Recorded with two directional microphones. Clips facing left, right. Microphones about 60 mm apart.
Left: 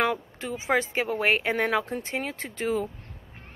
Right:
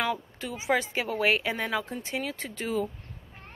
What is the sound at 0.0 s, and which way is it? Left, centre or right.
Speech, left.